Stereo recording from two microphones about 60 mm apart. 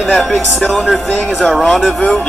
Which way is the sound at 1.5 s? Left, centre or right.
Centre.